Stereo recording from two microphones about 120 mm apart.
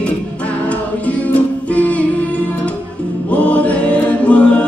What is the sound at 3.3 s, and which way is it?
Music, 10° left (ahead or behind).